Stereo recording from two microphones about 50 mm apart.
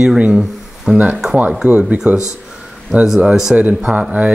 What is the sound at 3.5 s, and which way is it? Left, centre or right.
Speech, right.